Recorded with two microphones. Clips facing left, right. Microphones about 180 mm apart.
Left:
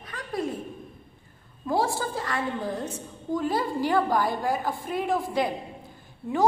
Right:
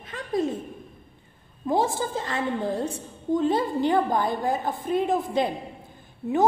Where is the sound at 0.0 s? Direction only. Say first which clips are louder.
Right 5 dB; 25° right (ahead or behind).